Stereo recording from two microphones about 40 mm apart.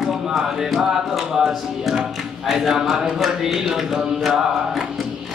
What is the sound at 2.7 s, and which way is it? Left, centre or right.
Music, centre.